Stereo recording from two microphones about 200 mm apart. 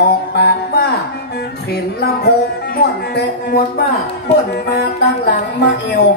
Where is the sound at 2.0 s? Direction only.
55° left (ahead or behind).